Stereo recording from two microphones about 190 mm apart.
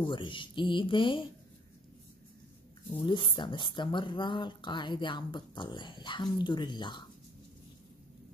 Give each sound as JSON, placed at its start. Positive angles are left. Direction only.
{"t": 0.0, "sound": "speech", "side_deg": 25}
{"t": 3.1, "sound": "speech", "side_deg": 25}